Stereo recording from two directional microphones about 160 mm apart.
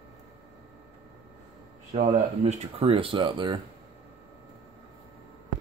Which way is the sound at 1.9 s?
45° right (ahead or behind).